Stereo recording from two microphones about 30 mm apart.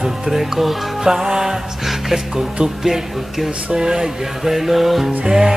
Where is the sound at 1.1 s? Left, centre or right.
Centre.